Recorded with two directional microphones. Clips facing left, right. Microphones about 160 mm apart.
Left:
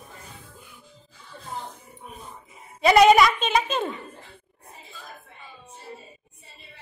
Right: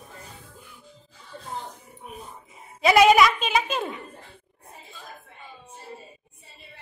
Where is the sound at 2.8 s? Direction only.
5° right (ahead or behind).